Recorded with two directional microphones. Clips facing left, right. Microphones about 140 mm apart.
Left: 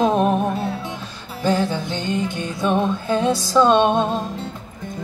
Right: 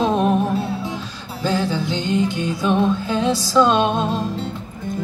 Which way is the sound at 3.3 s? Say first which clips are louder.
Even; 20° left (ahead or behind).